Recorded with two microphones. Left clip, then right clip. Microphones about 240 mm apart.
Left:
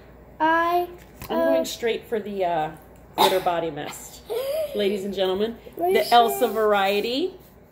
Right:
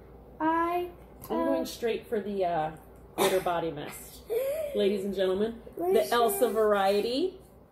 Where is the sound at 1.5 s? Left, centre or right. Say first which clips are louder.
Left 7 dB; centre.